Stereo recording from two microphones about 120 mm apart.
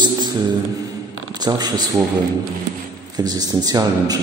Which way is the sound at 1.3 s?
35° right (ahead or behind).